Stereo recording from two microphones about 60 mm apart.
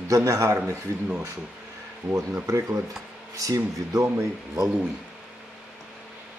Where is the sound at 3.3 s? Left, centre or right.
Right.